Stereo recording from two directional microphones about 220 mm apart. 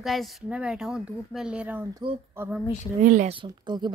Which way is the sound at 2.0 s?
20° right (ahead or behind).